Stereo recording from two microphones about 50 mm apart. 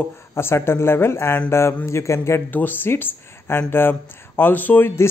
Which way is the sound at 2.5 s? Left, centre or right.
Left.